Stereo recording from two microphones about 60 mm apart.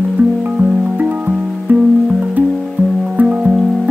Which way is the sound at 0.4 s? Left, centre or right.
Right.